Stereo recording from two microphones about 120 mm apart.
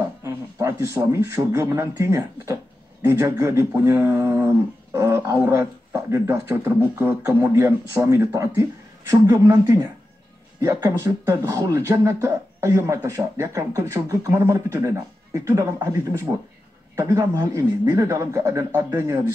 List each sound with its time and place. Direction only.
0.2 s speech: 25° right (ahead or behind)